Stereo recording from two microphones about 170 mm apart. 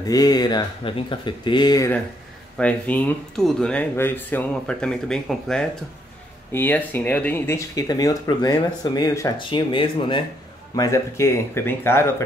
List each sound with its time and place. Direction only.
0.0 s speech: 20° left (ahead or behind)
2.5 s speech: 5° left (ahead or behind); by 10.2 s 30° left (ahead or behind)
10.8 s speech: 20° left (ahead or behind)